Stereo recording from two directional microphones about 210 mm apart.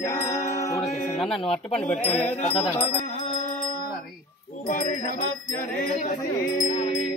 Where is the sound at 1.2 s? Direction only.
Centre (ahead or behind).